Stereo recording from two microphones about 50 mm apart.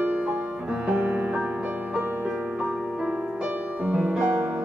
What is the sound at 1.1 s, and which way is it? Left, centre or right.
Music, right.